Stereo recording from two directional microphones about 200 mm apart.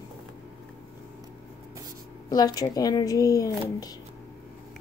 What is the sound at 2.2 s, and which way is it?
Speech, 20° left (ahead or behind).